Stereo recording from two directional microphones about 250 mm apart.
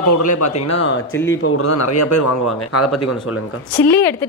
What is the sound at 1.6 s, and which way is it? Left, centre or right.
Speech, left.